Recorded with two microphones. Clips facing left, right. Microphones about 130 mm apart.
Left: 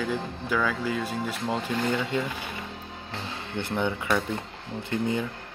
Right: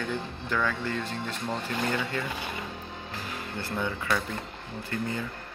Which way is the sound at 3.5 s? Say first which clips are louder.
Left 5 dB; 20° left (ahead or behind).